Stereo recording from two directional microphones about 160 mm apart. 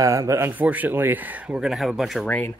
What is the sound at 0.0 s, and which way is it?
Speech, 20° right (ahead or behind).